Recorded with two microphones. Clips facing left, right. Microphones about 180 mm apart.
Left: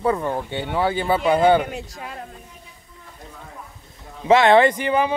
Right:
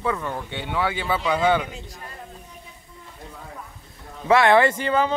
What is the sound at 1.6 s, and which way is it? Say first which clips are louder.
Speech: left 5 dB; 65° left (ahead or behind).